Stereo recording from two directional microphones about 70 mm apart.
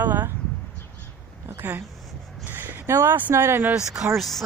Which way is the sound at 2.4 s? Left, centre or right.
Right.